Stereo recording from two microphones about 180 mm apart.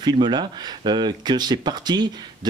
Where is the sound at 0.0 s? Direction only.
25° right (ahead or behind).